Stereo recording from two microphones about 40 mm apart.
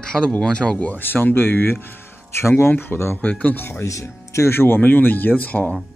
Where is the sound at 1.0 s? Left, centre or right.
Left.